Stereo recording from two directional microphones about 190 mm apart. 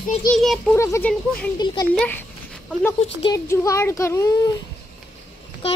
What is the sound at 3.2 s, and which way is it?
Speech, 15° left (ahead or behind).